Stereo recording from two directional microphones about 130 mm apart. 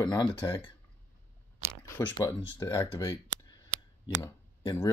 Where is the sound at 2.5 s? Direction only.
20° left (ahead or behind).